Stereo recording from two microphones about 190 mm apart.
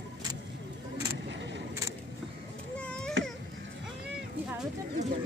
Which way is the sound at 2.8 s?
5° left (ahead or behind).